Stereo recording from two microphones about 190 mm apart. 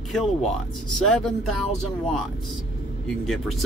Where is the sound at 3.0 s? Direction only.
Centre (ahead or behind).